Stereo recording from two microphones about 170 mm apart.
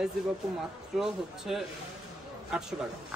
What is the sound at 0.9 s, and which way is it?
Speech, 5° right (ahead or behind).